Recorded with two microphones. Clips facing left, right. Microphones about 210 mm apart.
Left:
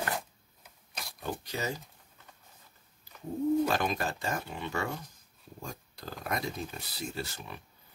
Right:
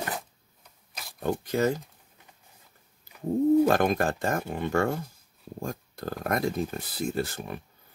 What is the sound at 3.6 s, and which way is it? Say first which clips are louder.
Speech: right 7 dB; 50° right (ahead or behind).